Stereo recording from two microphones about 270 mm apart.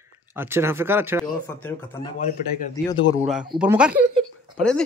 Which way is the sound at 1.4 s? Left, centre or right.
Centre.